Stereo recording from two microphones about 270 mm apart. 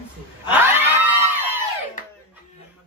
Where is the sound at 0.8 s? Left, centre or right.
Centre.